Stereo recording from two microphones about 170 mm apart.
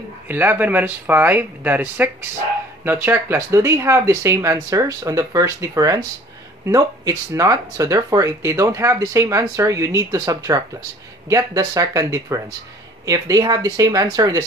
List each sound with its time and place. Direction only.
0.3 s speech: 10° right (ahead or behind)